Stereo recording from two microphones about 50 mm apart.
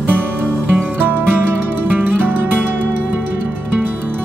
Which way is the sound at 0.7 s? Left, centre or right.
Right.